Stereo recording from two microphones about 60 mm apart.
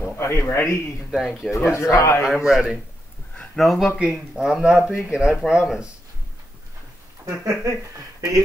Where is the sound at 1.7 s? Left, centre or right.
Left.